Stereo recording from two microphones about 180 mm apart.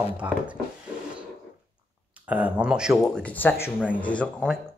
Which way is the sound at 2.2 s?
5° right (ahead or behind).